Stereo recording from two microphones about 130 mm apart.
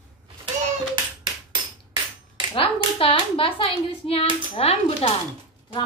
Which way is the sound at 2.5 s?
45° left (ahead or behind).